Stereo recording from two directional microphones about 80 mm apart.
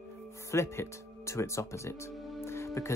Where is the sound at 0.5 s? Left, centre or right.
Left.